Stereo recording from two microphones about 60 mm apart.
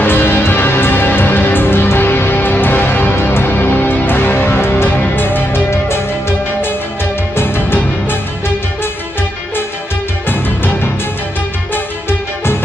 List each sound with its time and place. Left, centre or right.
0.0 s music: left
10.6 s music: left